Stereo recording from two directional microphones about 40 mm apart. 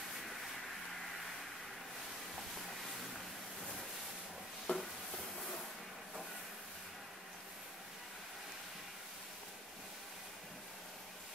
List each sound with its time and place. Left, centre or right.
4.7 s stir: left